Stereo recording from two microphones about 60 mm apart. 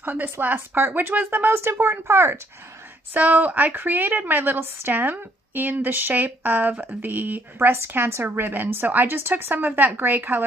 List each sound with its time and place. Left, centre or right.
0.0 s a woman's voice: right
3.1 s a woman's voice: right